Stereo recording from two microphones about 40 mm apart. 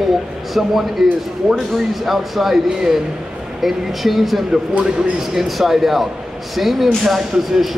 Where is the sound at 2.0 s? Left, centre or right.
Centre.